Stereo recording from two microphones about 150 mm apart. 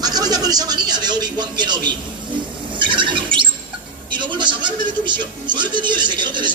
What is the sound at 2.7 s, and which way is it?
Squeal, 35° right (ahead or behind).